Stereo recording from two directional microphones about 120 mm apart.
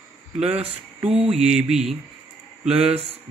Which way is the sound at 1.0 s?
55° right (ahead or behind).